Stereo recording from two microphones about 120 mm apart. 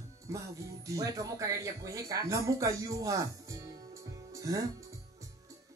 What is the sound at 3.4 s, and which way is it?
Music, 30° right (ahead or behind).